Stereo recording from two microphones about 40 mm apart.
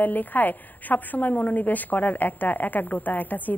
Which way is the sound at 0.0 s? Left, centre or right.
Left.